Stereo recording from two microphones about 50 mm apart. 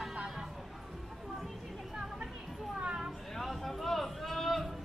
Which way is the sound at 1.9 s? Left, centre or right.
Centre.